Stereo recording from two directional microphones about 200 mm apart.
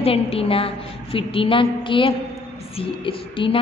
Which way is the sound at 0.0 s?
30° left (ahead or behind).